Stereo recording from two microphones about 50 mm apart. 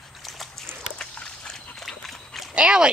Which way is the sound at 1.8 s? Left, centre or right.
Centre.